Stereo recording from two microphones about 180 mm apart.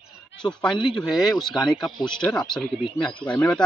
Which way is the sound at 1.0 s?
Centre (ahead or behind).